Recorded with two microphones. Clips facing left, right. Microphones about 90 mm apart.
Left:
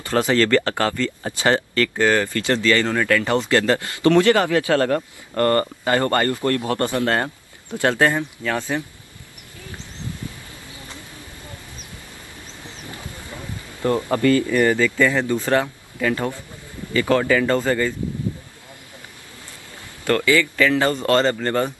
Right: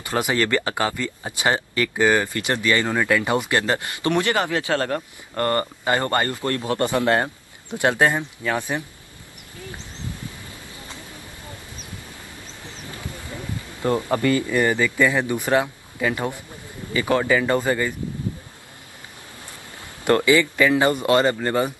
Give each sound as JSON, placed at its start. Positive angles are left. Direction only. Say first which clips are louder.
{"t": 0.0, "sound": "speech", "louder": "left 4 dB", "side_deg": -15}
{"t": 4.8, "sound": "speech", "louder": "left 5 dB", "side_deg": 45}
{"t": 5.4, "sound": "speech", "louder": "left 4 dB", "side_deg": -20}
{"t": 14.1, "sound": "speech", "louder": "left 4 dB", "side_deg": -20}
{"t": 20.1, "sound": "speech", "louder": "right 1 dB", "side_deg": -20}